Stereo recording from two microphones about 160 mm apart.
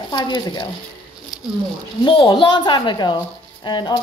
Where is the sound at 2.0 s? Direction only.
30° left (ahead or behind).